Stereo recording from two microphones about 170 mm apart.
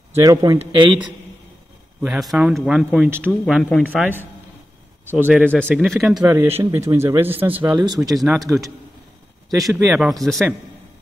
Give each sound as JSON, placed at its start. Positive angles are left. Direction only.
{"t": 0.1, "sound": "a man's voice", "side_deg": -20}
{"t": 2.0, "sound": "speech", "side_deg": -5}
{"t": 3.9, "sound": "speech", "side_deg": -10}
{"t": 6.1, "sound": "speech", "side_deg": -15}
{"t": 7.8, "sound": "a man's voice", "side_deg": -20}
{"t": 8.2, "sound": "speech", "side_deg": 0}
{"t": 9.8, "sound": "speech", "side_deg": 0}